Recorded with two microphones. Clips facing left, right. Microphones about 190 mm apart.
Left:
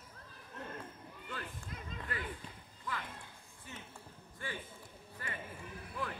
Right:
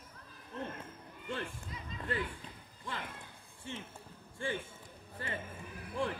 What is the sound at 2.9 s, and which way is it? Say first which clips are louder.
Music: even; 30° right (ahead or behind).